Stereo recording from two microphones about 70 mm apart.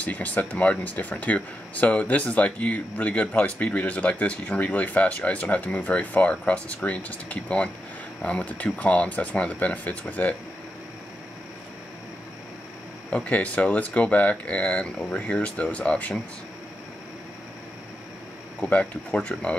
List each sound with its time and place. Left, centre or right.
0.0 s speech: left
13.1 s speech: centre
18.6 s speech: centre